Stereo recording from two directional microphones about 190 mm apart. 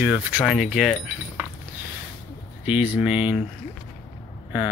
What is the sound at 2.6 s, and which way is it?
Speech, 5° right (ahead or behind).